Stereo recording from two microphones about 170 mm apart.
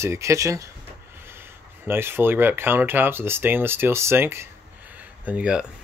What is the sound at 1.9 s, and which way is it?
Speech, 15° right (ahead or behind).